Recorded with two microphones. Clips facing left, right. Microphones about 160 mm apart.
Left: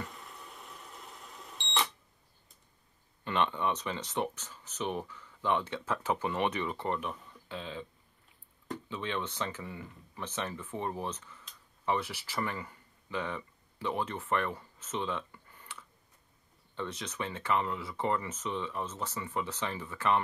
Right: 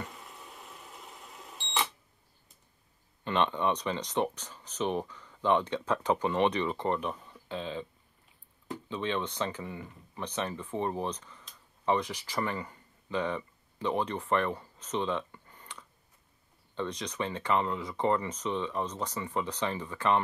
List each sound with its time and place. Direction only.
0.0 s beep: centre (ahead or behind)
3.3 s speech: 20° right (ahead or behind)
8.8 s speech: 20° right (ahead or behind)